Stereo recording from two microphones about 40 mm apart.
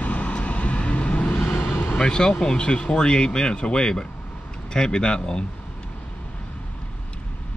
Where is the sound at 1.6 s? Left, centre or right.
Left.